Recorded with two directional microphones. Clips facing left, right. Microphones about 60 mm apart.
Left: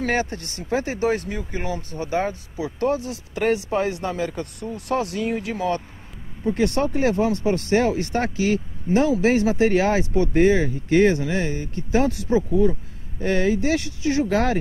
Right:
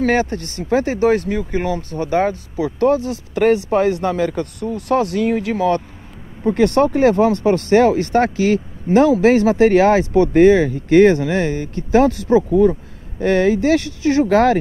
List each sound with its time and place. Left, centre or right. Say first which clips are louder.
0.0 s speech: right 6 dB; right
4.1 s speech: right 7 dB; right
4.7 s speech: right 7 dB; right